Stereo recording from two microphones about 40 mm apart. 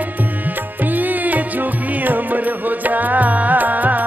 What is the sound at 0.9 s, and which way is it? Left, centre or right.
Music, right.